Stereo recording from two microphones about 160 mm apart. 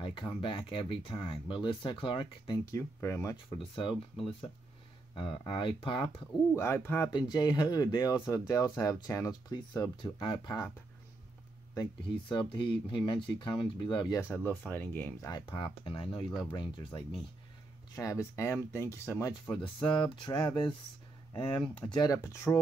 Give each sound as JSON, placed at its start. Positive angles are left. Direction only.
{"t": 0.0, "sound": "speech", "side_deg": 30}
{"t": 3.4, "sound": "speech", "side_deg": 30}
{"t": 6.5, "sound": "speech", "side_deg": 15}
{"t": 7.1, "sound": "speech", "side_deg": 25}
{"t": 11.7, "sound": "speech", "side_deg": 25}
{"t": 14.3, "sound": "speech", "side_deg": 15}
{"t": 15.3, "sound": "speech", "side_deg": 25}
{"t": 17.9, "sound": "speech", "side_deg": 20}
{"t": 20.2, "sound": "speech", "side_deg": 30}